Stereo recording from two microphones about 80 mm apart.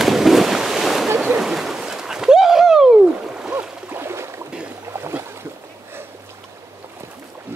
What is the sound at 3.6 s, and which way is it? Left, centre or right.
Boat, right.